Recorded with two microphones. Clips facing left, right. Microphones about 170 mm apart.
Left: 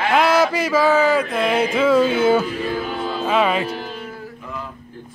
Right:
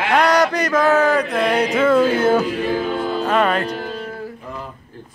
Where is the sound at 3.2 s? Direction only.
Centre (ahead or behind).